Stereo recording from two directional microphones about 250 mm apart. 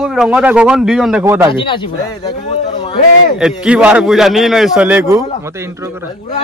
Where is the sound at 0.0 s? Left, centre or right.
Centre.